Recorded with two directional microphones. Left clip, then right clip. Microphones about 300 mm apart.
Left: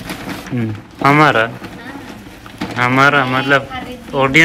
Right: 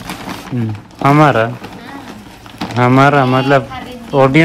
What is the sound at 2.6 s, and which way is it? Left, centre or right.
Speech, centre.